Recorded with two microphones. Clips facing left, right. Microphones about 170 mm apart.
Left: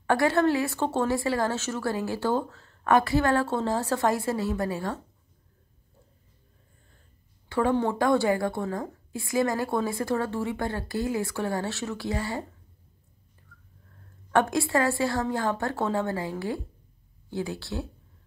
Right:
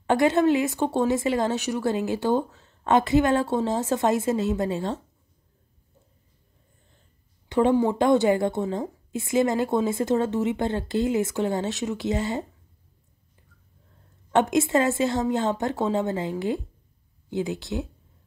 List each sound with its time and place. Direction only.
0.0 s a woman's voice: 20° right (ahead or behind)
7.4 s a sound: 20° right (ahead or behind)
7.7 s a woman's voice: 15° right (ahead or behind)
14.3 s a woman's voice: 20° right (ahead or behind)